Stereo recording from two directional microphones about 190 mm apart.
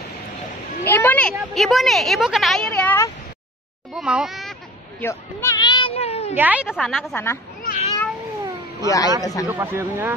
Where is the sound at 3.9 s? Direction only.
5° right (ahead or behind).